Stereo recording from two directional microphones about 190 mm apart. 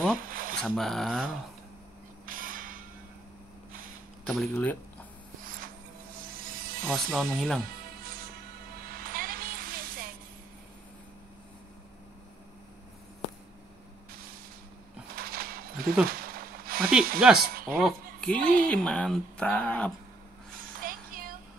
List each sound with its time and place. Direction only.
0.2 s a sound: 45° right (ahead or behind)
0.6 s speech: 5° left (ahead or behind)
2.2 s a sound: 45° right (ahead or behind)
4.3 s speech: 5° left (ahead or behind)
6.2 s a sound: 50° right (ahead or behind)
6.9 s speech: centre (ahead or behind)
8.8 s music: 50° right (ahead or behind)
15.1 s a sound: 50° right (ahead or behind)
17.2 s speech: 5° right (ahead or behind)
18.4 s speech: 50° right (ahead or behind)
18.7 s speech: 5° left (ahead or behind)
20.8 s child singing: 50° right (ahead or behind)